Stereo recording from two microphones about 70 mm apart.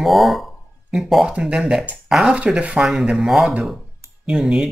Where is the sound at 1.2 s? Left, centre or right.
Centre.